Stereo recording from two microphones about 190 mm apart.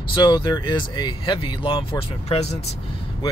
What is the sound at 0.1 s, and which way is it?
Speech, 25° left (ahead or behind).